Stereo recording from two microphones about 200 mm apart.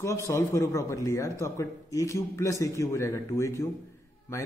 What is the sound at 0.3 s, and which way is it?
A man's voice, 15° left (ahead or behind).